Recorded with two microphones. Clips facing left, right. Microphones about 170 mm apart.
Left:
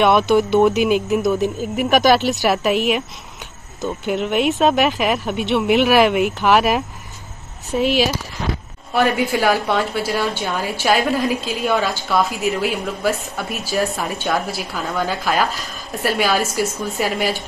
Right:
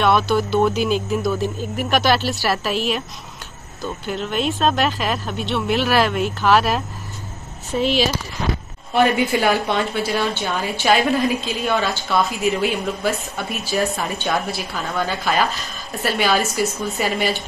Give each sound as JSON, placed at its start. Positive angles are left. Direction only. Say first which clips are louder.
{"t": 0.0, "sound": "a woman's voice", "louder": "left 3 dB", "side_deg": 20}
{"t": 3.8, "sound": "a woman's voice", "louder": "left 4 dB", "side_deg": 15}